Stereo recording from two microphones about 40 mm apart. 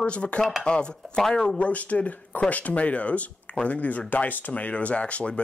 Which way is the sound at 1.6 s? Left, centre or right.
Left.